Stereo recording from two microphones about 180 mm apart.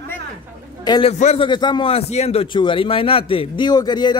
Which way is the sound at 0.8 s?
25° left (ahead or behind).